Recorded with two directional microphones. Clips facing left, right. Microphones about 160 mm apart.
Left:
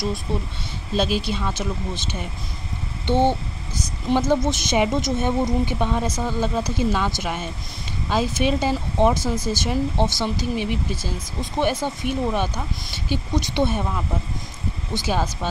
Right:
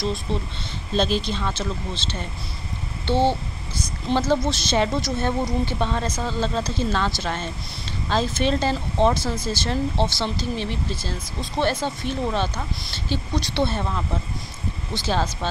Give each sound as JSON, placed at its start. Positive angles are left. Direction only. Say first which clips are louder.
{"t": 0.0, "sound": "speech", "louder": "even", "side_deg": 10}